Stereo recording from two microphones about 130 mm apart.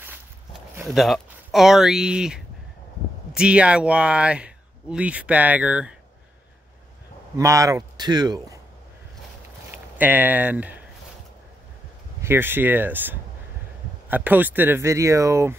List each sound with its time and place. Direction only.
0.8 s speech: centre (ahead or behind)
7.3 s a man's voice: 25° right (ahead or behind)
9.7 s speech: 15° right (ahead or behind)
12.2 s speech: 15° right (ahead or behind)